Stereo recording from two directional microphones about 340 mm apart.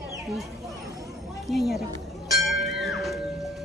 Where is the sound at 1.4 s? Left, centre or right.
Centre.